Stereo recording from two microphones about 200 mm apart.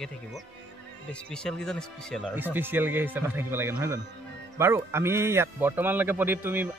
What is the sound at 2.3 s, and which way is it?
A man's voice, 10° right (ahead or behind).